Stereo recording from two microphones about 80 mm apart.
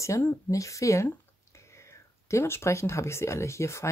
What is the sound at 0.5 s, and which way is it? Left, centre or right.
Speech, left.